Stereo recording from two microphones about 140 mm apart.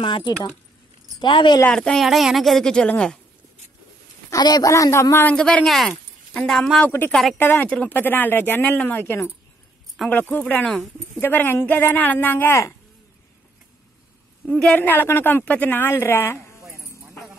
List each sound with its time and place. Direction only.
0.0 s speech: 35° left (ahead or behind)
1.7 s speech: 5° left (ahead or behind)
4.3 s a man's voice: 30° left (ahead or behind)
5.3 s a woman's voice: 5° left (ahead or behind)
14.5 s a woman's voice: 10° left (ahead or behind)